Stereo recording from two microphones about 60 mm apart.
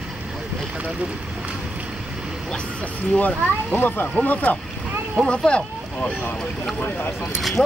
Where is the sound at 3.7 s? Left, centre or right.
Left; by 6.1 s centre.